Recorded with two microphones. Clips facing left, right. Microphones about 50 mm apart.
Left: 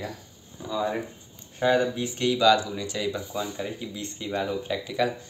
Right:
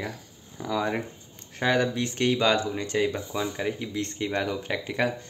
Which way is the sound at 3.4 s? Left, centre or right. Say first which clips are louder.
Right 2 dB; right.